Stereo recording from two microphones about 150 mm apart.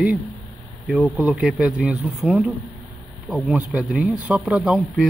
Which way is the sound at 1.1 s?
10° right (ahead or behind).